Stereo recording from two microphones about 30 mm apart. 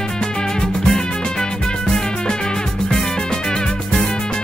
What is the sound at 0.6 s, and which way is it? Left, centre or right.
Music, left.